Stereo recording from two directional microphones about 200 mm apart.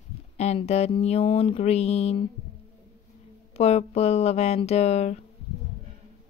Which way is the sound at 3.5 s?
30° left (ahead or behind).